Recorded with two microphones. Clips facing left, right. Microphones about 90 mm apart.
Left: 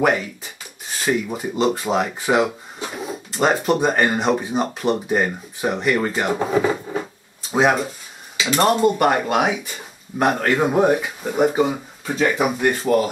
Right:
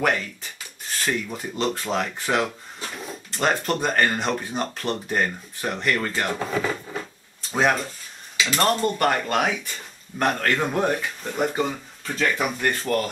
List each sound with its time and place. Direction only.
0.0 s speech: 10° left (ahead or behind)
6.4 s a sound: 20° left (ahead or behind)
7.4 s speech: 10° left (ahead or behind)